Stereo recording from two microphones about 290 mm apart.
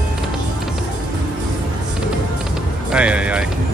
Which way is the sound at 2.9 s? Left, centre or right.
Centre.